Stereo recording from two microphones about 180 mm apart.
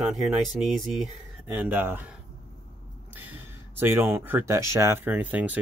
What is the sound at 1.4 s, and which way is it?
Speech, 10° right (ahead or behind).